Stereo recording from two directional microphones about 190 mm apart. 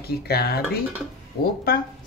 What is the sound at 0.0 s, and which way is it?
A woman's voice, 55° left (ahead or behind).